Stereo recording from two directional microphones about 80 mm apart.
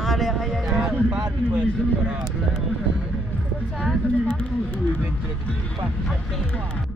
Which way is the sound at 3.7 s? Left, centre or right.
Centre.